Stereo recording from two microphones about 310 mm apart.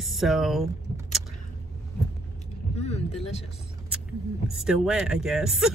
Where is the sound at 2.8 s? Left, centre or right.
Centre.